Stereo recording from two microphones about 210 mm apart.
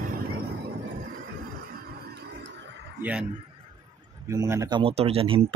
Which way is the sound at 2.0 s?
50° right (ahead or behind).